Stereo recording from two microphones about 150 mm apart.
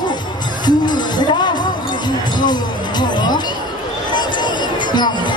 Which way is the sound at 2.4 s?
30° left (ahead or behind).